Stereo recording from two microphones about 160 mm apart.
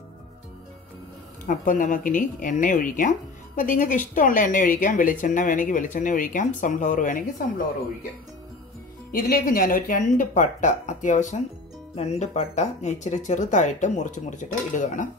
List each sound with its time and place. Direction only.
1.4 s speech: 50° left (ahead or behind)
9.1 s speech: 65° left (ahead or behind)